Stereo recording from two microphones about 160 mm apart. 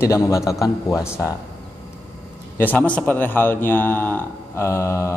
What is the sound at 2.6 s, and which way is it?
A man's voice, 10° left (ahead or behind).